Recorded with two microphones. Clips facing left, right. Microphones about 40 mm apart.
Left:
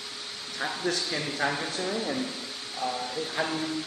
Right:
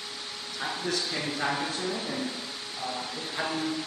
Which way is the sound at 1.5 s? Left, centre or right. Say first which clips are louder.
Right 1 dB; centre.